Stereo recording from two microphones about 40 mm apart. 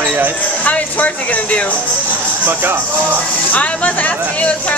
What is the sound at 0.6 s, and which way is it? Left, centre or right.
Speech, left.